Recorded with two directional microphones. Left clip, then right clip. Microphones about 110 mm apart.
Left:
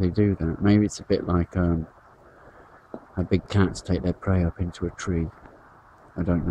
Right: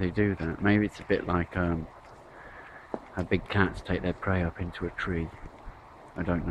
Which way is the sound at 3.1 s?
25° left (ahead or behind).